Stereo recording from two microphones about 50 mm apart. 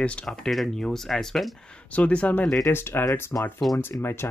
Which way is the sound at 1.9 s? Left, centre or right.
Left.